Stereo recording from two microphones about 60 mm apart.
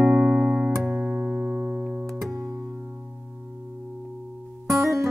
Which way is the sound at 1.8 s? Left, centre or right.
Centre.